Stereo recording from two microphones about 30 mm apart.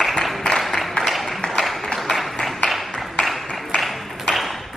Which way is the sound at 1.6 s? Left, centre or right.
Centre.